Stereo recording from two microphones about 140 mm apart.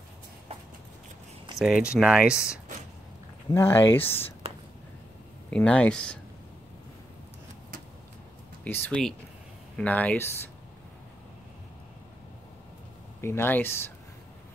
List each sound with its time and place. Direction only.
1.6 s speech: 5° right (ahead or behind)
3.5 s speech: 15° left (ahead or behind)
5.5 s speech: 5° left (ahead or behind)
8.6 s speech: 15° left (ahead or behind)
13.2 s speech: 15° left (ahead or behind)